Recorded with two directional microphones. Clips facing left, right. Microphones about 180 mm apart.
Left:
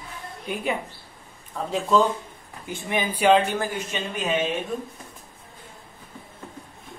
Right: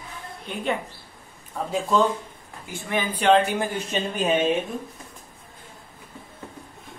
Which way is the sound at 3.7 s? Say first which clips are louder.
Right 3 dB; 30° right (ahead or behind).